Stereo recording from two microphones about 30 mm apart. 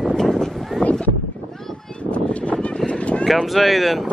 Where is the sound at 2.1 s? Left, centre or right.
Left.